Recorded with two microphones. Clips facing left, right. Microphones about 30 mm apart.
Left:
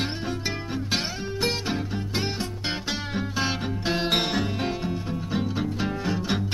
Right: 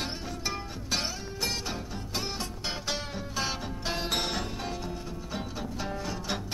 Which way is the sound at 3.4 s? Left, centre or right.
Left.